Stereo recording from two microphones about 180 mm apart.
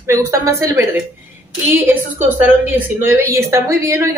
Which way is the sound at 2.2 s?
10° right (ahead or behind).